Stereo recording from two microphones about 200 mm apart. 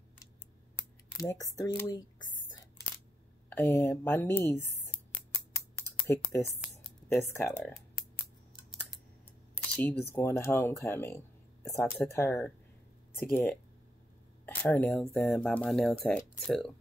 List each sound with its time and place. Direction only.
1.2 s speech: 15° left (ahead or behind)
6.0 s speech: 15° left (ahead or behind)
10.1 s speech: 10° left (ahead or behind)